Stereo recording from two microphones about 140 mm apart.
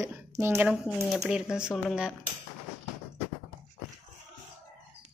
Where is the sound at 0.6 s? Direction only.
Centre (ahead or behind).